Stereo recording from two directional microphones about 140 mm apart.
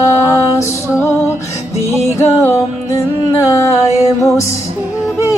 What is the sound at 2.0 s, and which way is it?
Music, 20° left (ahead or behind).